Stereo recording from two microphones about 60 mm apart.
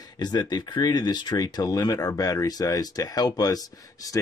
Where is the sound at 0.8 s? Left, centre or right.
Left.